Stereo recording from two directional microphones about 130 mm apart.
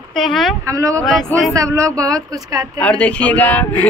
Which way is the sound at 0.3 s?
Centre (ahead or behind).